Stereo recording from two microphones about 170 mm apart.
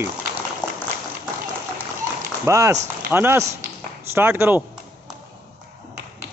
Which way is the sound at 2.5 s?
15° right (ahead or behind).